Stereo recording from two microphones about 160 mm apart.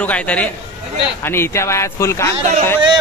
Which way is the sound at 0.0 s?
10° left (ahead or behind).